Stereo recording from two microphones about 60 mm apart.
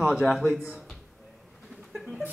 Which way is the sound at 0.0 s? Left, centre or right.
Centre.